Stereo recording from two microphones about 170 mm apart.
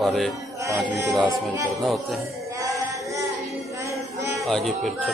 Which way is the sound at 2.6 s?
20° right (ahead or behind).